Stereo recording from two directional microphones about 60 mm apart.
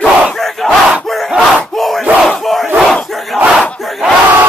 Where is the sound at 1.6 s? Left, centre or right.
Centre.